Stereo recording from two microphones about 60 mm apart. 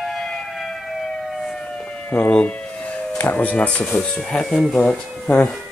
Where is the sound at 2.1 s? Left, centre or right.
Centre.